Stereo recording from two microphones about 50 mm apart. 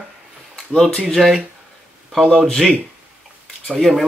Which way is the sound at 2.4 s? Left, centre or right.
Centre.